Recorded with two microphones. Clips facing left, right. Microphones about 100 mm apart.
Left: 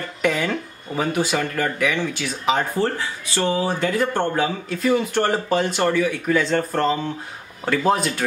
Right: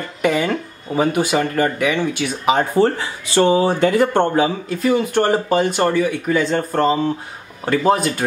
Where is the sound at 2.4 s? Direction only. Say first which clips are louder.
Right 5 dB; 15° right (ahead or behind).